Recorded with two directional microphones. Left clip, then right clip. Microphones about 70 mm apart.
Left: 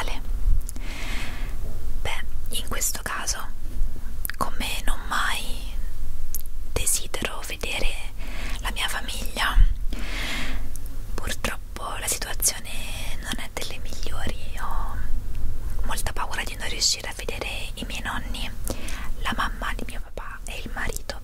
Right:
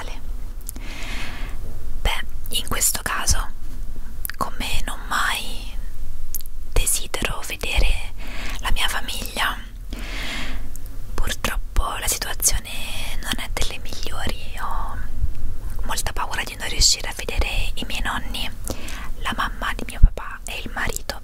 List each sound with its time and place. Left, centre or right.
0.7 s a sound: centre
2.0 s whispering: right
4.3 s whispering: centre
9.4 s whispering: centre
11.1 s whispering: centre
16.1 s whispering: centre
19.6 s whispering: centre